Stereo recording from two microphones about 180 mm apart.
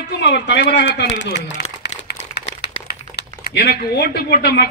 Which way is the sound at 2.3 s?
65° left (ahead or behind).